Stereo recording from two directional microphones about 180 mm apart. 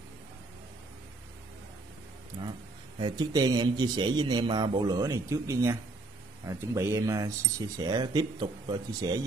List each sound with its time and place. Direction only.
3.0 s speech: 25° right (ahead or behind)